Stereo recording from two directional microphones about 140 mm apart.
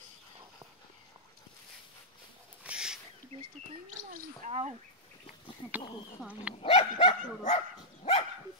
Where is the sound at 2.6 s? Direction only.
5° right (ahead or behind).